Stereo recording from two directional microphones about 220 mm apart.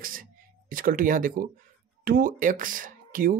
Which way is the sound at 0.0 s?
40° right (ahead or behind).